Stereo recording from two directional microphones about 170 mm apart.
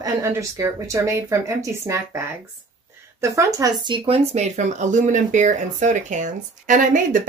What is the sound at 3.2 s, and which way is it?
Speech, 15° right (ahead or behind).